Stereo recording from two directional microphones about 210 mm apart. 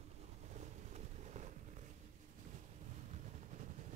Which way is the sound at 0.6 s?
35° right (ahead or behind).